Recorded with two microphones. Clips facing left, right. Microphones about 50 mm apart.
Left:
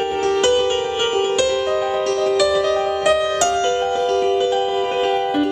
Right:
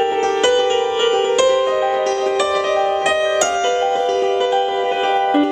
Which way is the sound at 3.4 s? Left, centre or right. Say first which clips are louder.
Right 1 dB; right.